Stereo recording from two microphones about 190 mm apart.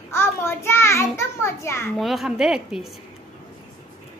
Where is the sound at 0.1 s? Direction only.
15° left (ahead or behind).